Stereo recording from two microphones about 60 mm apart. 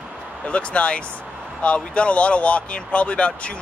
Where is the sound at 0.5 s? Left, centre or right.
Centre.